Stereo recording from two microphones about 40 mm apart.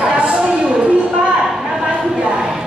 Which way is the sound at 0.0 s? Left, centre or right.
Right.